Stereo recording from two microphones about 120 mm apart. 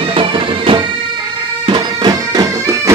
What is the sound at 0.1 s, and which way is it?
Bagpipes, 45° right (ahead or behind).